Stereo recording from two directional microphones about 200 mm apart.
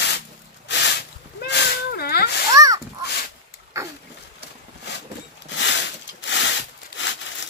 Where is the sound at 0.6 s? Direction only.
60° left (ahead or behind).